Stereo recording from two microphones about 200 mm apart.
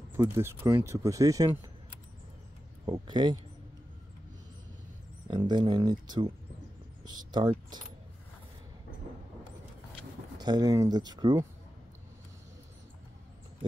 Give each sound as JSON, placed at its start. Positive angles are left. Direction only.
{"t": 0.2, "sound": "speech", "side_deg": -10}
{"t": 2.8, "sound": "speech", "side_deg": -20}
{"t": 5.3, "sound": "speech", "side_deg": -20}
{"t": 10.3, "sound": "speech", "side_deg": -20}